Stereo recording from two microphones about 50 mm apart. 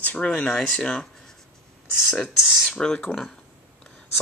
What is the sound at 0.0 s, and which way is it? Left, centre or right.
Speech, left.